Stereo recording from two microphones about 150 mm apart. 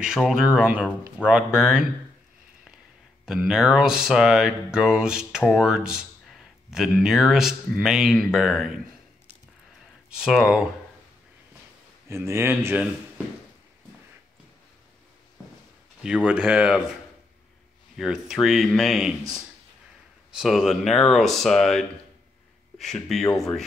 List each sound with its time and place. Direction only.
0.0 s speech: 5° right (ahead or behind)
3.3 s speech: 5° right (ahead or behind)
10.0 s speech: 5° right (ahead or behind)
12.1 s speech: 15° right (ahead or behind)
16.3 s speech: 10° right (ahead or behind)
17.9 s speech: centre (ahead or behind)